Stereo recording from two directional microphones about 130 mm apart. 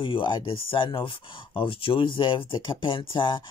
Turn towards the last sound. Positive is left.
turn(degrees=40)  # may be behind; listen again after turning